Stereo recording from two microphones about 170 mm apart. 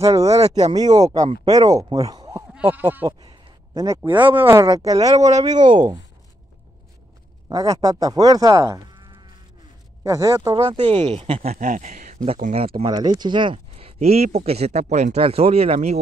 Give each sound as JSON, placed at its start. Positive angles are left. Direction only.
{"t": 0.0, "sound": "speech", "side_deg": -20}
{"t": 0.4, "sound": "speech", "side_deg": -35}
{"t": 1.3, "sound": "speech", "side_deg": -25}
{"t": 2.5, "sound": "bleat", "side_deg": -10}
{"t": 3.1, "sound": "speech", "side_deg": -30}
{"t": 7.4, "sound": "speech", "side_deg": -20}
{"t": 10.0, "sound": "speech", "side_deg": -20}
{"t": 11.5, "sound": "speech", "side_deg": -50}